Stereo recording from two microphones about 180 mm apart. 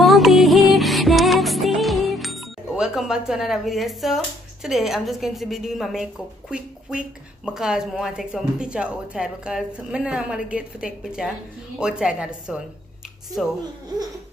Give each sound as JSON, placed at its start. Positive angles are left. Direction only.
{"t": 0.0, "sound": "music", "side_deg": 0}
{"t": 4.6, "sound": "a woman's voice", "side_deg": 0}